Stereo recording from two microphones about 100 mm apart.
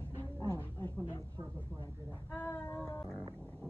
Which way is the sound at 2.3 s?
20° left (ahead or behind).